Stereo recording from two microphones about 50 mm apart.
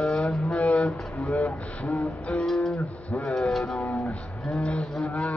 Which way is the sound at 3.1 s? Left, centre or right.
Left.